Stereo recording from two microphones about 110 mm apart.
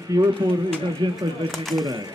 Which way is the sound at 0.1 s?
35° right (ahead or behind).